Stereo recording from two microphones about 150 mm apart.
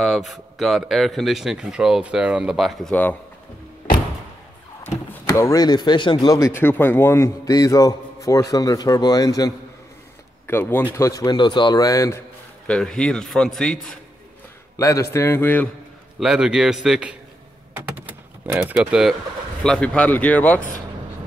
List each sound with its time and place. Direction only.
0.0 s speech: centre (ahead or behind)
2.9 s speech: 10° left (ahead or behind)
5.3 s a man's voice: 20° left (ahead or behind)
10.4 s a man's voice: 15° left (ahead or behind)
12.6 s speech: 5° left (ahead or behind)
14.8 s speech: 20° left (ahead or behind)
16.2 s speech: 5° right (ahead or behind)
18.4 s speech: 15° right (ahead or behind); by 20.6 s 10° left (ahead or behind)